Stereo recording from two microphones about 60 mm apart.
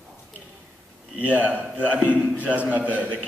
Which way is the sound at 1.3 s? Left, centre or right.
Right.